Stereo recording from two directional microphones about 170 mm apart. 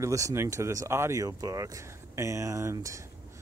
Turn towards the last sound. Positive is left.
turn(degrees=-20)  # may be behind; listen again after turning